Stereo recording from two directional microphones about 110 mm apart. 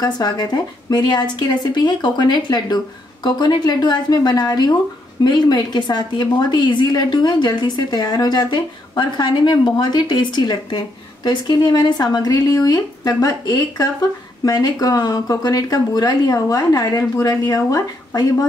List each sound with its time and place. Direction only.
0.0 s a woman's voice: 35° left (ahead or behind)